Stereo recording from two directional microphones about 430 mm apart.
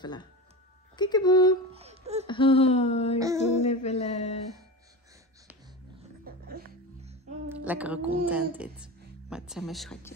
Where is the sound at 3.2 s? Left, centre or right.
Centre.